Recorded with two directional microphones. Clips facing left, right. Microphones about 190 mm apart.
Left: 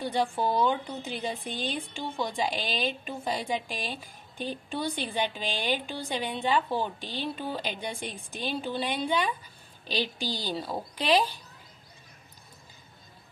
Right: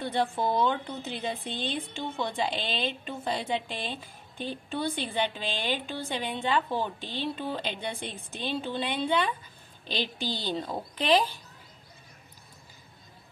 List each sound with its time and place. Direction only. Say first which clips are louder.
0.1 s speech: even; 10° left (ahead or behind)
10.1 s a woman's voice: even; 20° right (ahead or behind)
10.6 s speech: even; 10° left (ahead or behind)